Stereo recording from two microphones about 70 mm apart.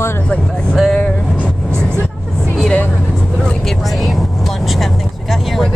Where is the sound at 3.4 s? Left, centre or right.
Centre.